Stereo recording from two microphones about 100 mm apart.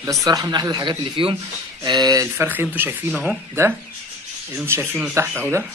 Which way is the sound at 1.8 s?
40° right (ahead or behind).